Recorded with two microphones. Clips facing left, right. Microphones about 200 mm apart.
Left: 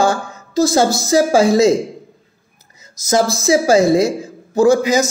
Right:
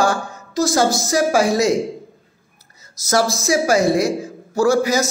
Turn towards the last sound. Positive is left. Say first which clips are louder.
# left 4 dB
turn(degrees=20)  # may be behind; listen again after turning